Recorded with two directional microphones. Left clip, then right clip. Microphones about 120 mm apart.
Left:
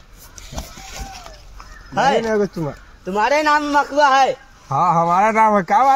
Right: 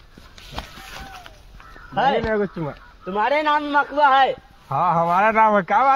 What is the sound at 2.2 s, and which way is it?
Speech, 25° left (ahead or behind).